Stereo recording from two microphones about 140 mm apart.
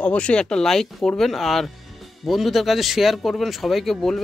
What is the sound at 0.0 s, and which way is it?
Speech, 10° left (ahead or behind).